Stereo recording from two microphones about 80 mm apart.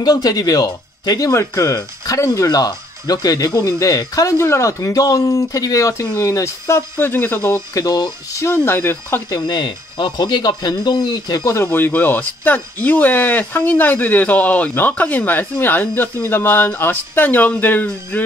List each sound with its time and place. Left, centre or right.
0.0 s speech: left
1.3 s speech: left
9.3 s speech: left
11.5 s speech: left